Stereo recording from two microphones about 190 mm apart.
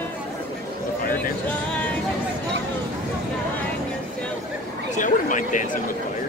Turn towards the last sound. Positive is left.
turn(degrees=40)  # may be behind; listen again after turning